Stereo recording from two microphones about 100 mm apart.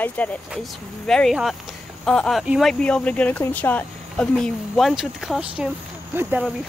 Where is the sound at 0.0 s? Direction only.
15° left (ahead or behind).